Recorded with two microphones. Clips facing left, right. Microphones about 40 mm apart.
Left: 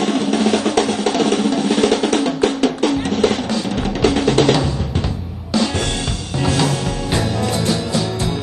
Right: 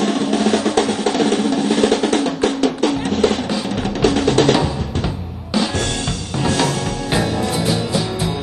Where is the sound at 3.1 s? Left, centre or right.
Centre.